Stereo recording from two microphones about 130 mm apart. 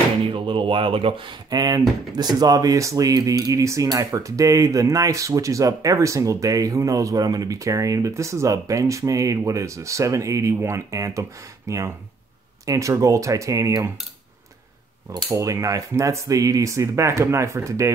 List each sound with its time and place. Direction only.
0.3 s speech: 40° right (ahead or behind); by 13.7 s 25° right (ahead or behind)
15.2 s speech: 25° right (ahead or behind)